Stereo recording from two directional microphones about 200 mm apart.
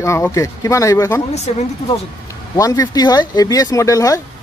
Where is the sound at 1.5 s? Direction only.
35° left (ahead or behind).